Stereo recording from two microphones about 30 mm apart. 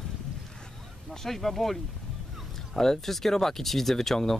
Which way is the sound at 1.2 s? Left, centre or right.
Centre.